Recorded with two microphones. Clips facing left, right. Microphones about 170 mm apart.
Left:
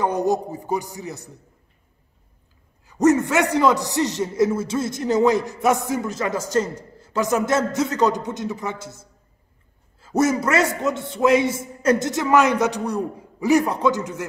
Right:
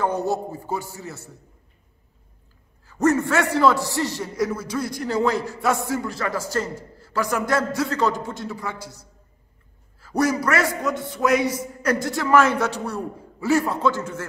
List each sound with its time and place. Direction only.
0.0 s a man's voice: 15° left (ahead or behind)
2.8 s a man's voice: 15° left (ahead or behind)